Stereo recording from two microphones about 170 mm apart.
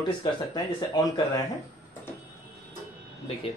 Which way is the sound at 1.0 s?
25° left (ahead or behind).